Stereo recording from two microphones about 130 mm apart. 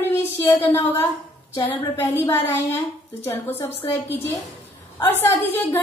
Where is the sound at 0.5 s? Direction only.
20° left (ahead or behind).